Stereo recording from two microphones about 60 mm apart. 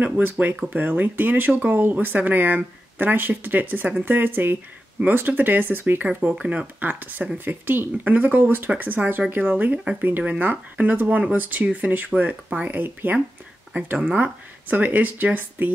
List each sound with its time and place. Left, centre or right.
0.0 s speech: right
6.4 s speech: centre
6.8 s speech: right
13.9 s speech: centre